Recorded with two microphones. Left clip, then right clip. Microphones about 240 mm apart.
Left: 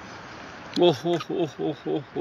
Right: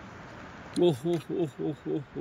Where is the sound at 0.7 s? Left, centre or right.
Centre.